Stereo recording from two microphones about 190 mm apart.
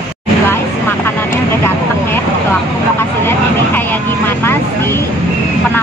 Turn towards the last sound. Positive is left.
turn(degrees=10)  # may be behind; listen again after turning